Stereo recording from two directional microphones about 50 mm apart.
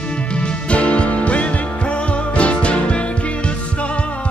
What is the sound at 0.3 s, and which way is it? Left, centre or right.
Music, left.